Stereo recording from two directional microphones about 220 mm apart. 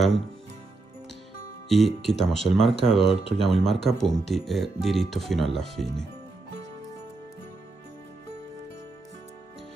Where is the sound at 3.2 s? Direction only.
25° right (ahead or behind).